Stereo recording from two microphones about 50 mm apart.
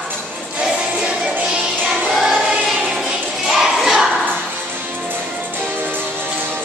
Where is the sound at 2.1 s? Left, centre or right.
Centre.